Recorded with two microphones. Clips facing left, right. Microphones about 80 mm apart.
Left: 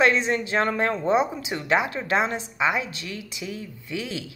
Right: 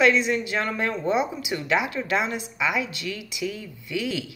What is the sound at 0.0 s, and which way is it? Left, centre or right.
A woman's voice, left.